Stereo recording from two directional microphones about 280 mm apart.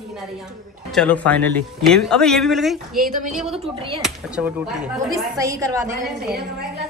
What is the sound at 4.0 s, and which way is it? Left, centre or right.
A woman's voice, centre.